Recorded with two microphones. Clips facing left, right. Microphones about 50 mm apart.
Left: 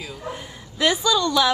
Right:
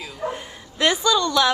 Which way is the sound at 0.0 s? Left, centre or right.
Centre.